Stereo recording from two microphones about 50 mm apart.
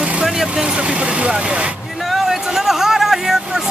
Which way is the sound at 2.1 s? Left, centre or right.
Centre.